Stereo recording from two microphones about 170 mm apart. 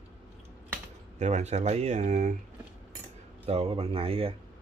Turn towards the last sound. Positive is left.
turn(degrees=-35)  # may be behind; listen again after turning